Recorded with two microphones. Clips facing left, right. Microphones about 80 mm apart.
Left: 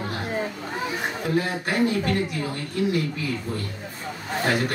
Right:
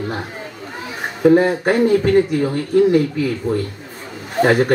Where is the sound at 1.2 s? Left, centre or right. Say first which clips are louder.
Right 15 dB; right.